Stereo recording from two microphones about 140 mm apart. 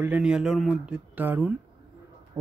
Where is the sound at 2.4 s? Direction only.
20° right (ahead or behind).